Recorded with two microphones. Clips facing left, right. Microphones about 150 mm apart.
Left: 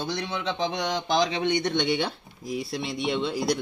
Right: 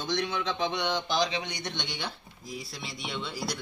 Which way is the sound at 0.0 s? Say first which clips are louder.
Left 1 dB; 35° left (ahead or behind).